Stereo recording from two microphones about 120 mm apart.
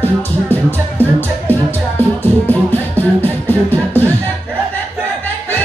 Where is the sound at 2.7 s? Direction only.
15° left (ahead or behind).